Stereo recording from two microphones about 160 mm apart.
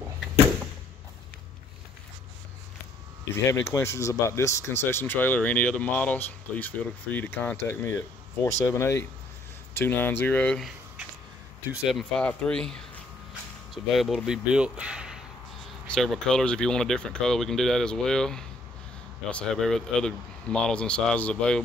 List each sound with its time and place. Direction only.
3.4 s speech: 15° left (ahead or behind)
11.7 s speech: centre (ahead or behind)
13.9 s speech: centre (ahead or behind)